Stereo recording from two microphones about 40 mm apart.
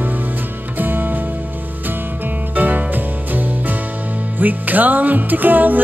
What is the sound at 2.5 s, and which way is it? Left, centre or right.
Music, right.